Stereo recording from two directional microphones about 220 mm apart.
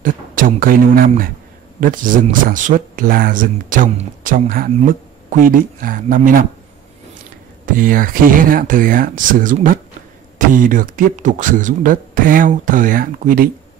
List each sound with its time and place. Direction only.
0.0 s speech: 40° right (ahead or behind)
7.6 s speech: 40° right (ahead or behind)